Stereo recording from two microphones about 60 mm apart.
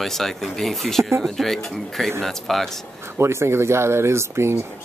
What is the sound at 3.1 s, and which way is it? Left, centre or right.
Speech, right.